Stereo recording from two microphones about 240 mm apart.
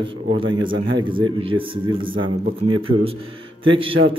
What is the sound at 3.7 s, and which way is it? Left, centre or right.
Speech, right.